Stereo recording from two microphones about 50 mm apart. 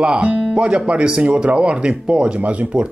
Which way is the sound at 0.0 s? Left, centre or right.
Right.